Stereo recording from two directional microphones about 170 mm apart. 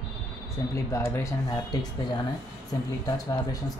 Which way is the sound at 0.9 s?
15° left (ahead or behind).